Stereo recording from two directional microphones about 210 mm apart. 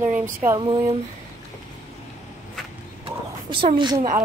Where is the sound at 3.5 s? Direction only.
25° right (ahead or behind).